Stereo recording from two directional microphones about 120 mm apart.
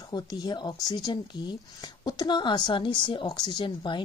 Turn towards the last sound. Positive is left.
turn(degrees=40)  # may be behind; listen again after turning